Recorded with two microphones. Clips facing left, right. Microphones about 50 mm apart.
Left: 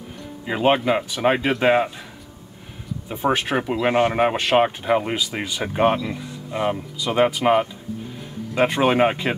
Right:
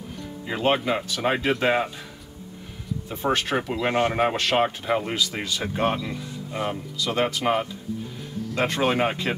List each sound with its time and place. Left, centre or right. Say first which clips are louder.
0.5 s speech: left 4 dB; centre
3.1 s speech: left 3 dB; centre